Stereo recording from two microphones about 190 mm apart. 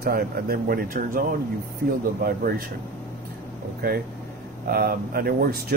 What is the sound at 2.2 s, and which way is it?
Speech, 50° right (ahead or behind).